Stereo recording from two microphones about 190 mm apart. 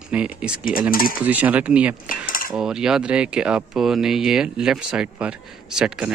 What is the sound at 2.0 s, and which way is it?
Cutlery, 45° left (ahead or behind).